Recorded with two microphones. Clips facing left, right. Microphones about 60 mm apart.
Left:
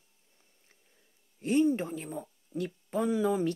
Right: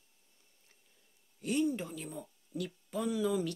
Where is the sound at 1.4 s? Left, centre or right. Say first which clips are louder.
Left 6 dB; left.